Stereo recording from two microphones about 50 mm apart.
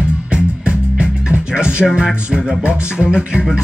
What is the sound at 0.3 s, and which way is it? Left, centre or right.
Music, right.